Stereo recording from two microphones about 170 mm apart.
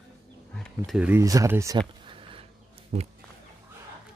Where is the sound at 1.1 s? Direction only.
20° right (ahead or behind).